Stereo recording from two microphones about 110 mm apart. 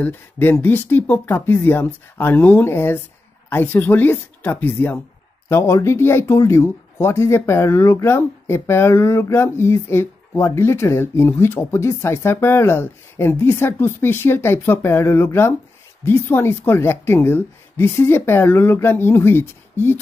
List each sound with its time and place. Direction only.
0.0 s speech: 20° left (ahead or behind)